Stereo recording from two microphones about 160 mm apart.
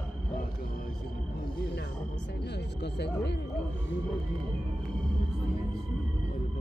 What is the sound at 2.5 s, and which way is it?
Speech, 90° left.